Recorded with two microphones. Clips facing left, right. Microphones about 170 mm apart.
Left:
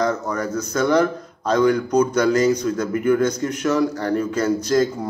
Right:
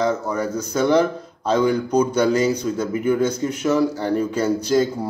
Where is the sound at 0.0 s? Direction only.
10° right (ahead or behind).